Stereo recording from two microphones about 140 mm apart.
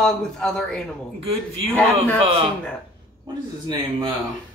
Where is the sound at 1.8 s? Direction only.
5° left (ahead or behind).